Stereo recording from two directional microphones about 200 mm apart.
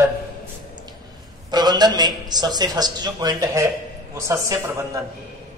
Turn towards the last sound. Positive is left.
turn(degrees=-15)  # may be behind; listen again after turning